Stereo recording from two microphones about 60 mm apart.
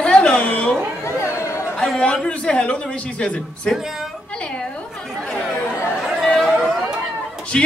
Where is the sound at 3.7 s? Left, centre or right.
Centre.